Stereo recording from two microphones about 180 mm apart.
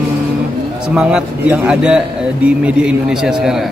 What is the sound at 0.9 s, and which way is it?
A man's voice, 5° right (ahead or behind).